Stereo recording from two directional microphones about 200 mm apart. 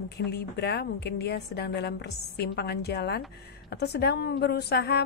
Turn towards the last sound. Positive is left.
turn(degrees=55)  # may be behind; listen again after turning